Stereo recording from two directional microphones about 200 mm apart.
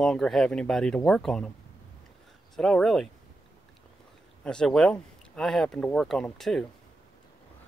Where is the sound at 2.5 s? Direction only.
Centre (ahead or behind).